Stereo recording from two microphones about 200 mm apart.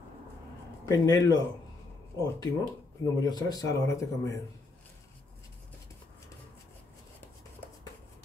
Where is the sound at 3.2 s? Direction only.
20° left (ahead or behind).